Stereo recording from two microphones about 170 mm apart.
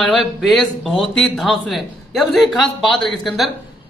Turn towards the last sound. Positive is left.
turn(degrees=0)  # may be behind; listen again after turning